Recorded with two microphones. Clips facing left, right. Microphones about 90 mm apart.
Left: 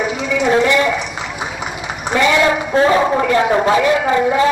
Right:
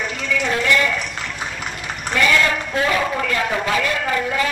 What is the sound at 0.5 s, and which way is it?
Speech, 20° left (ahead or behind).